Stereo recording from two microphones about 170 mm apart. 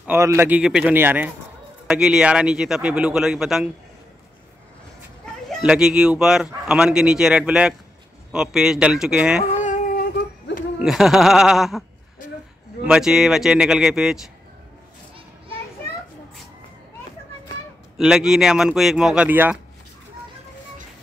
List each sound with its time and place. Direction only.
0.0 s a man's voice: 15° right (ahead or behind)
5.5 s speech: 5° right (ahead or behind)
9.4 s cat: 50° left (ahead or behind)
10.8 s speech: centre (ahead or behind)
12.8 s speech: 5° right (ahead or behind)
17.9 s speech: 5° right (ahead or behind)